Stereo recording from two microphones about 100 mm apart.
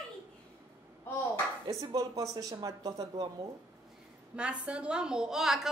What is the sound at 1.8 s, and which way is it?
Speech, 35° right (ahead or behind).